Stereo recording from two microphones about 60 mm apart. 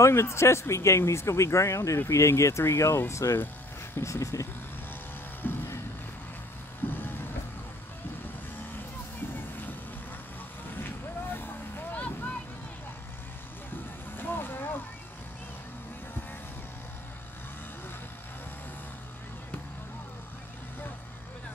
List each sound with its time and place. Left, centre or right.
0.0 s speech: left
5.4 s vehicle: left
6.9 s music: left
9.3 s music: left
10.7 s vehicle: left
14.1 s vehicle: left